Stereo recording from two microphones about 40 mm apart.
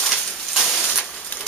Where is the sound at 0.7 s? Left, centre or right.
Centre.